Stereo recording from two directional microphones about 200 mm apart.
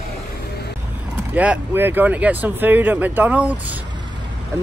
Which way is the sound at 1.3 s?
5° right (ahead or behind).